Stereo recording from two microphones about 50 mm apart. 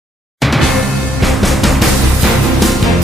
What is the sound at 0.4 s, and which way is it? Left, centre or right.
Music, centre.